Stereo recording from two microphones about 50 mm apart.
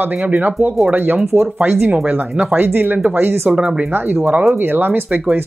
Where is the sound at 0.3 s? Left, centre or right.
Right.